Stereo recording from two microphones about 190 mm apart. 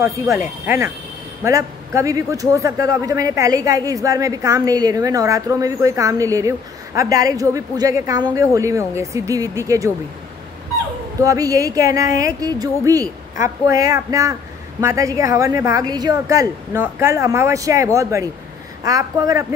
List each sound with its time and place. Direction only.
0.0 s a man's voice: 15° right (ahead or behind)
11.2 s a man's voice: 15° right (ahead or behind)